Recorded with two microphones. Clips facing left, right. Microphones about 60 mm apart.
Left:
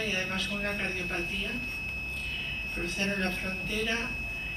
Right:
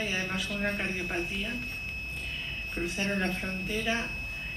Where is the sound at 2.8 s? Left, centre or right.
Centre.